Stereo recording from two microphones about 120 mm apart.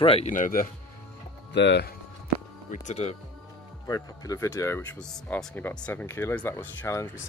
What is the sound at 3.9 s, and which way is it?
Speech, 25° left (ahead or behind).